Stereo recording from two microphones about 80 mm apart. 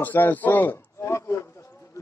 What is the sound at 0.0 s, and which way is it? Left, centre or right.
A man's voice, left.